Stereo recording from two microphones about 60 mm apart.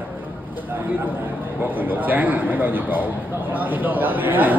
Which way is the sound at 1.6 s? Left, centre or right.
Right.